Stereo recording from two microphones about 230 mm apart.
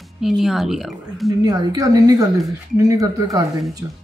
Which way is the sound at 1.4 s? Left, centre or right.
Centre.